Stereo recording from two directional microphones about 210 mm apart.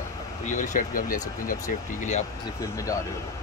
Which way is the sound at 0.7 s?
40° left (ahead or behind).